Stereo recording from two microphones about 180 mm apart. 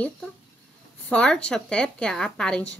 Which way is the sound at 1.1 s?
5° left (ahead or behind).